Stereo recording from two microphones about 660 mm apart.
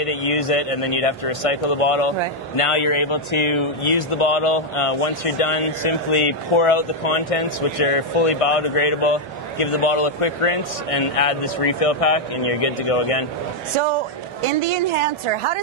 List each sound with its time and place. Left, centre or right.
0.0 s speech: left
13.7 s a woman's voice: right